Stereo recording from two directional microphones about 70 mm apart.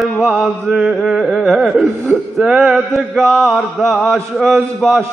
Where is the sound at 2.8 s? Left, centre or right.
Centre.